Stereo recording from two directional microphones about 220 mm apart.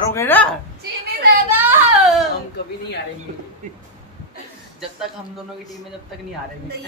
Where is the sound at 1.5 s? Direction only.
5° right (ahead or behind).